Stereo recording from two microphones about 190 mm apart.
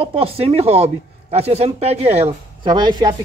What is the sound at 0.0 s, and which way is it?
A man's voice, 30° right (ahead or behind).